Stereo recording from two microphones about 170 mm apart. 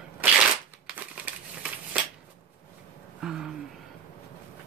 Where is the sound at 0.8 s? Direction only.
5° right (ahead or behind).